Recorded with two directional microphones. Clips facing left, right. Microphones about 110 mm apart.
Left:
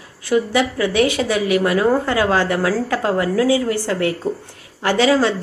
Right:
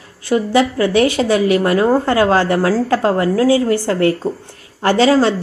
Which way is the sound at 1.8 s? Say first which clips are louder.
Right 3 dB; 25° right (ahead or behind).